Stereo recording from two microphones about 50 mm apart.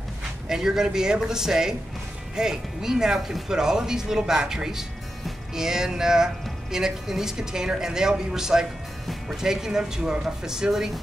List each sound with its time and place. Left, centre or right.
0.5 s speech: centre